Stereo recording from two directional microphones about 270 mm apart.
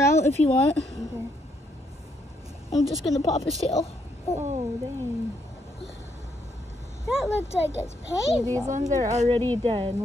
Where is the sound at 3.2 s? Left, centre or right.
Left.